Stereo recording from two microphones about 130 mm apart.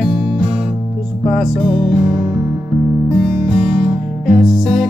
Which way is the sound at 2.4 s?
25° right (ahead or behind).